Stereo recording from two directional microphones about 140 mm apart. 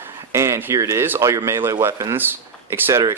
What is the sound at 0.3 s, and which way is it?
Speech, 20° right (ahead or behind).